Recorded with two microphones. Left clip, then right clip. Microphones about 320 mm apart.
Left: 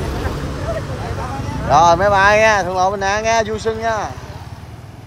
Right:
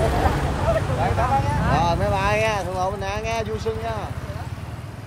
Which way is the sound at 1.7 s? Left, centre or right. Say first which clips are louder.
Left 12 dB; left.